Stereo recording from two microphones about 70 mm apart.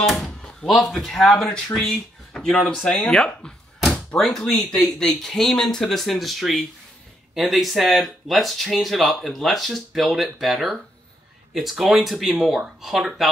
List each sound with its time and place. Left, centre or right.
0.0 s door: centre
0.9 s speech: centre